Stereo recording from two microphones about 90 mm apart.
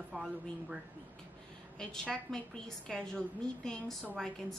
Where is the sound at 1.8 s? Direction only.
5° left (ahead or behind).